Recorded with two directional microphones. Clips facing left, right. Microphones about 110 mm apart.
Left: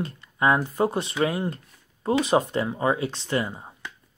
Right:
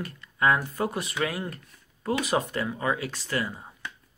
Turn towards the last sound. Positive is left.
turn(degrees=25)  # may be behind; listen again after turning